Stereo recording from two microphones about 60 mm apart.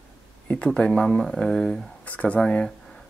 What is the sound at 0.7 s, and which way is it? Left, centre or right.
Speech, centre.